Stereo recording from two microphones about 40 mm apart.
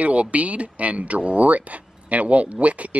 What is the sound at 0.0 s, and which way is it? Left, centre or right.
Speech, right.